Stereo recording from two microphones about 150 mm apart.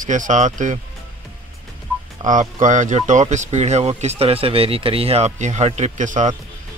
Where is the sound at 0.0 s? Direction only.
60° right (ahead or behind).